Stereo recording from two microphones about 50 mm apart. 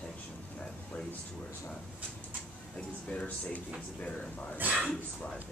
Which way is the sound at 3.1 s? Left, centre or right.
Left.